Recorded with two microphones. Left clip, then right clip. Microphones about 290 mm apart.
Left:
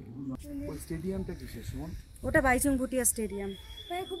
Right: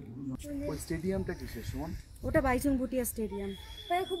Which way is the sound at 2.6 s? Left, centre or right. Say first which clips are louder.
Left 2 dB; left.